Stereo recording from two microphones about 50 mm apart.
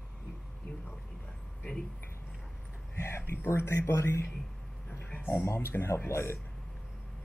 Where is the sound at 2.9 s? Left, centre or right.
Left.